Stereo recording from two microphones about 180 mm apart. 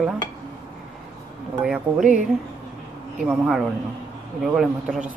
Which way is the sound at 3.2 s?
5° right (ahead or behind).